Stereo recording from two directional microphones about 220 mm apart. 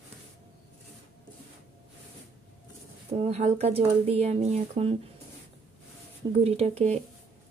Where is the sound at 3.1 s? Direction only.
30° right (ahead or behind).